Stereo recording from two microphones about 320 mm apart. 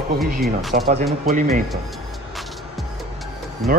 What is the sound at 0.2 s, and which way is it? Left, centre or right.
Speech, centre.